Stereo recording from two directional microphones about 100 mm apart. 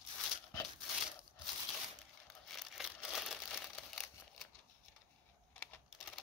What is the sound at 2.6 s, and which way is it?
Crumpling, centre (ahead or behind).